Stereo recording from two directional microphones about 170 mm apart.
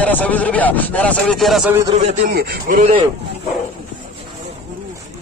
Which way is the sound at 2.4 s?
55° right (ahead or behind).